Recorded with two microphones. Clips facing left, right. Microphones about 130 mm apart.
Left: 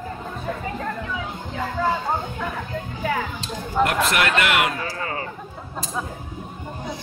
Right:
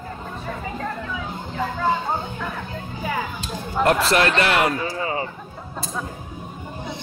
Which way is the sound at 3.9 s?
30° right (ahead or behind).